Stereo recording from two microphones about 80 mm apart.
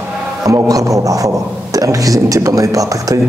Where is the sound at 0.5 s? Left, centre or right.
Right.